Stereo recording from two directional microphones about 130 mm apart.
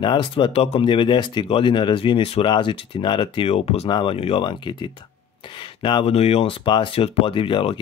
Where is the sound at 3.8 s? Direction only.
40° left (ahead or behind).